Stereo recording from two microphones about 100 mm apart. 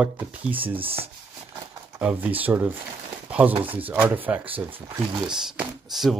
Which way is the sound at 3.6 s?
65° right (ahead or behind).